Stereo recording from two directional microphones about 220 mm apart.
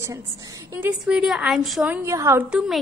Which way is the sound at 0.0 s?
15° right (ahead or behind).